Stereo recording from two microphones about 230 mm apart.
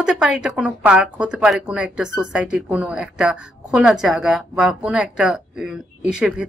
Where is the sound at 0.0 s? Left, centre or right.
Centre.